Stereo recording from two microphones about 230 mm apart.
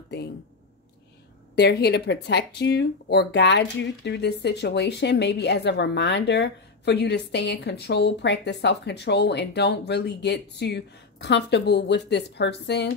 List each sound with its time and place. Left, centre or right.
1.5 s speech: left